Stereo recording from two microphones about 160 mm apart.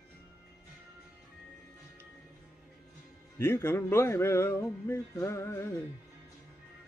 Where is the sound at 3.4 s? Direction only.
15° left (ahead or behind).